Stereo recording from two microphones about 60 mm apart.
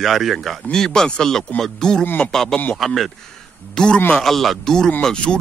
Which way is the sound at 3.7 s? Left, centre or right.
Centre.